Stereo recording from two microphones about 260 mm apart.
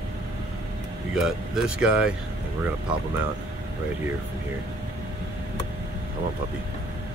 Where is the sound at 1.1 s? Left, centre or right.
Centre.